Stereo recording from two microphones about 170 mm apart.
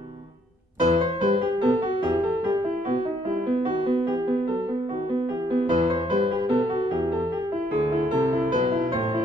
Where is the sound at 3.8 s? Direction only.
30° right (ahead or behind).